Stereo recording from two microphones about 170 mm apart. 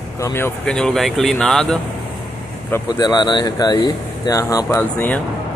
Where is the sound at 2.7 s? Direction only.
25° left (ahead or behind).